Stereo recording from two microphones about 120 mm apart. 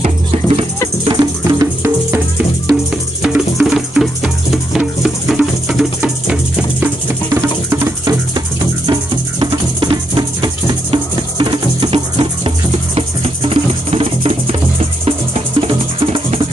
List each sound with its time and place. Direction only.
0.0 s music: 60° right (ahead or behind)
1.2 s music: 30° right (ahead or behind)
2.7 s music: 5° right (ahead or behind)
7.7 s music: 25° right (ahead or behind)
9.4 s music: 40° right (ahead or behind); by 16.3 s 60° right (ahead or behind)